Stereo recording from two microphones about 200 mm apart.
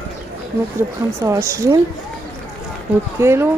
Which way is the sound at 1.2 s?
15° right (ahead or behind).